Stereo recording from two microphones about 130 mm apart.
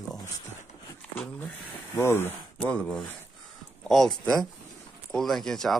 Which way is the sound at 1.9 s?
20° left (ahead or behind).